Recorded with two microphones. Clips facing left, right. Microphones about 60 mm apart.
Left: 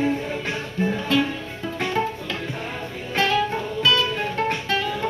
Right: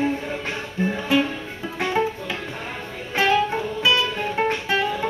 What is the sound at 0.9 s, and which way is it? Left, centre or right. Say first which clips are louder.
Music: right 2 dB; centre.